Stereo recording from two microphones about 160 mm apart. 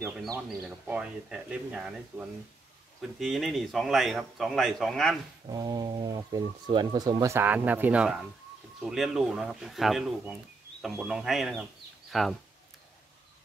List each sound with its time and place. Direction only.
0.7 s a man's voice: 5° right (ahead or behind)
5.5 s a man's voice: 25° right (ahead or behind); by 12.4 s centre (ahead or behind)